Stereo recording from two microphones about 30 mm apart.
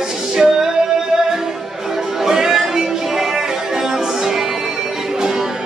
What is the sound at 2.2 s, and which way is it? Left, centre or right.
Music, centre.